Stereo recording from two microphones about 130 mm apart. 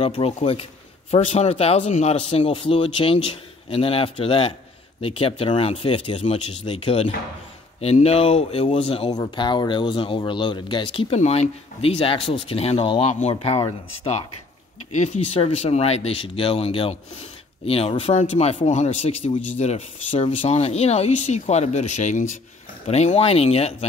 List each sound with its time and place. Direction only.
0.0 s speech: 45° left (ahead or behind)
11.1 s speech: 55° left (ahead or behind)
15.3 s speech: 50° left (ahead or behind); by 22.4 s 65° left (ahead or behind)
22.8 s speech: 55° left (ahead or behind)